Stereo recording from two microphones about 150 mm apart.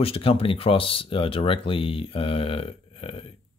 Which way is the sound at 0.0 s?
40° left (ahead or behind).